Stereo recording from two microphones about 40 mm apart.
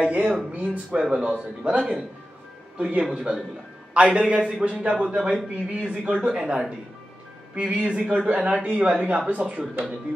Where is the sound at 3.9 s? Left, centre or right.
Right.